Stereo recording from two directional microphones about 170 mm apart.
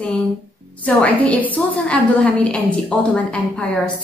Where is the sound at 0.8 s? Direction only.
10° left (ahead or behind).